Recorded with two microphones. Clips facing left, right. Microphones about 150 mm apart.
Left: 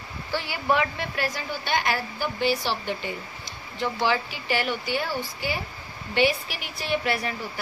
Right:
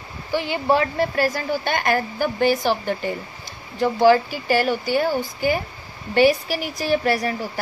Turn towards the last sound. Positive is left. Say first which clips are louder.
# right 6 dB
turn(degrees=-40)  # may be behind; listen again after turning